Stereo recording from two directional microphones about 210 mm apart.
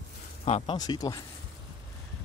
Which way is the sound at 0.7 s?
20° left (ahead or behind).